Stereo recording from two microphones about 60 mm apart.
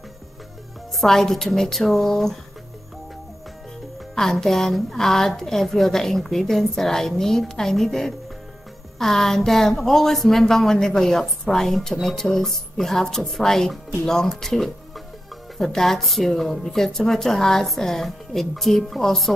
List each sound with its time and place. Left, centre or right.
0.9 s a woman's voice: centre
4.1 s a woman's voice: centre